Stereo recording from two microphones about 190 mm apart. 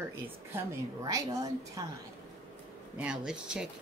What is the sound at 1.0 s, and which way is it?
Speech, 20° right (ahead or behind).